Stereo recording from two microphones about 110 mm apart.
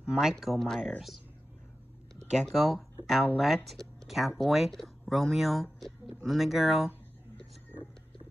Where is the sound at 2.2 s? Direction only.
90° right.